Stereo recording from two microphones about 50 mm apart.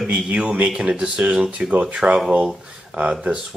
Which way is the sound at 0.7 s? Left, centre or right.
Centre.